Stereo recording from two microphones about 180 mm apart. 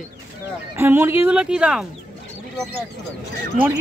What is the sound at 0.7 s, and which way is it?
A woman's voice, 10° right (ahead or behind).